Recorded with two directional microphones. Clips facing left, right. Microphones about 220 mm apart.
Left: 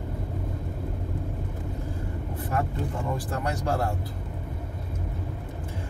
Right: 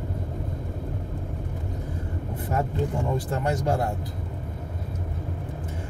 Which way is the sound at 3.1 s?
25° right (ahead or behind).